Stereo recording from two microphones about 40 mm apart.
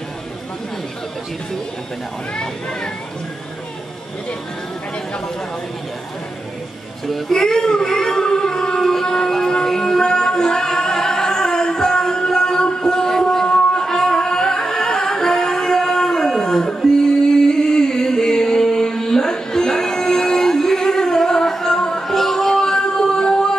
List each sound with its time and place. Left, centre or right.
7.1 s child singing: centre
12.8 s a sound: centre
13.8 s music: centre
22.0 s music: centre